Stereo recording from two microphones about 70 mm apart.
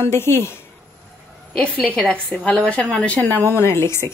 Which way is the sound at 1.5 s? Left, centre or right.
Centre.